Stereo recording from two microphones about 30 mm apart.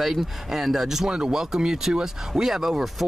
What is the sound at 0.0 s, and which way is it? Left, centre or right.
Speech, centre.